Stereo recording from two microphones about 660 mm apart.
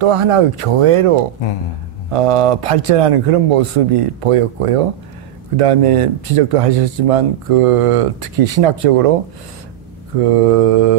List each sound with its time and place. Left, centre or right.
0.0 s speech: right
10.3 s mantra: right